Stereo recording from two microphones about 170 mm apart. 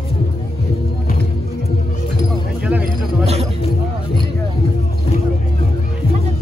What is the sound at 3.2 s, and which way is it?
Music, 35° right (ahead or behind).